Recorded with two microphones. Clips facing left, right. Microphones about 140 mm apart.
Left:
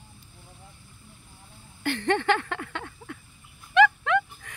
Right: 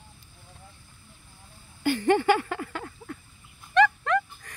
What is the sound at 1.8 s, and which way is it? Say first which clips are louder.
Speech: right 3 dB; 5° right (ahead or behind).